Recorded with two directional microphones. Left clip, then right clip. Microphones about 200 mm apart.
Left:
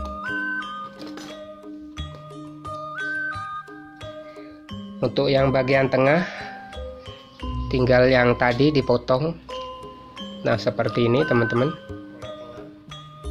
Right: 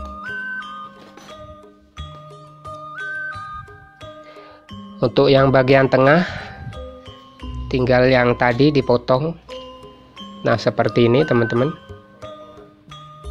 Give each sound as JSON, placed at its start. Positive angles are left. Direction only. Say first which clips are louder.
{"t": 0.0, "sound": "music", "louder": "left 1 dB", "side_deg": 0}
{"t": 2.6, "sound": "music", "louder": "even", "side_deg": 0}
{"t": 5.0, "sound": "speech", "louder": "right 6 dB", "side_deg": -25}
{"t": 7.6, "sound": "speech", "louder": "right 2 dB", "side_deg": -15}
{"t": 10.4, "sound": "speech", "louder": "right 5 dB", "side_deg": -25}
{"t": 11.7, "sound": "music", "louder": "left 1 dB", "side_deg": 0}